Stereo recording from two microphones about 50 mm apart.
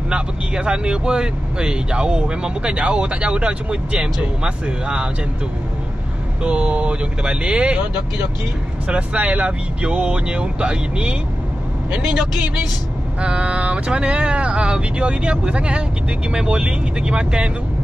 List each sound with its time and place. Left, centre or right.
0.1 s speech: centre
6.4 s a man's voice: right